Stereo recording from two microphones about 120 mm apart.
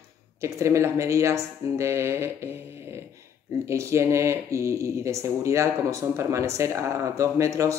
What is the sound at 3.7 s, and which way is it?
Speech, 25° right (ahead or behind).